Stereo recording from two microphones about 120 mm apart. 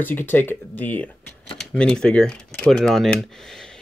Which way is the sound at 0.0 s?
15° left (ahead or behind).